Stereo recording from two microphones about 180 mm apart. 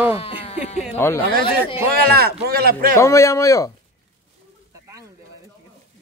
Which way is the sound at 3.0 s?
15° left (ahead or behind).